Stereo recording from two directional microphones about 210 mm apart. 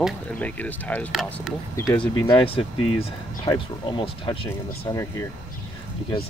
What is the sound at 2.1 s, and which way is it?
Speech, 25° left (ahead or behind).